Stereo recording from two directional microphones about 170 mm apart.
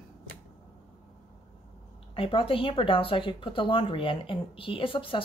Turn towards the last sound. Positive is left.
turn(degrees=30)  # may be behind; listen again after turning